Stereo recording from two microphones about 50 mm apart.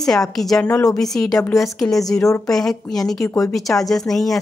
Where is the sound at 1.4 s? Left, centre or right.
Left.